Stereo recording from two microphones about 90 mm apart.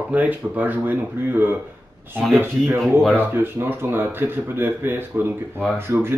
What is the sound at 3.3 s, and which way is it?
Speech, 25° right (ahead or behind).